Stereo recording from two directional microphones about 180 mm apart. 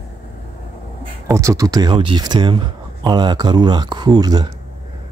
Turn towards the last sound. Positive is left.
turn(degrees=-20)  # may be behind; listen again after turning